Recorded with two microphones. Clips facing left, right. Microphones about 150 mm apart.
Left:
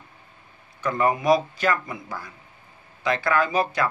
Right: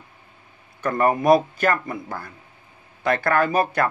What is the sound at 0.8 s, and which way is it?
A man's voice, 50° right (ahead or behind).